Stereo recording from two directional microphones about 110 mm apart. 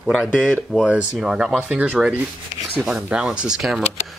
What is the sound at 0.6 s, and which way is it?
Speech, centre (ahead or behind).